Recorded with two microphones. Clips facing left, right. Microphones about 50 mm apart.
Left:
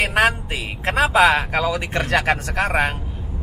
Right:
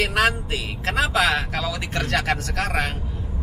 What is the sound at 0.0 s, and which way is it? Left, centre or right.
Speech, left.